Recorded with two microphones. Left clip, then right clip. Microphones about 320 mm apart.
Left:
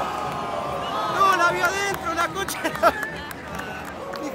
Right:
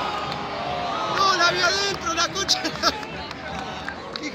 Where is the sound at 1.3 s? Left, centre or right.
Centre.